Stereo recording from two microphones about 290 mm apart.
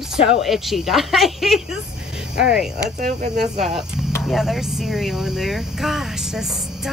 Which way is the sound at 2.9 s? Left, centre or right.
Right.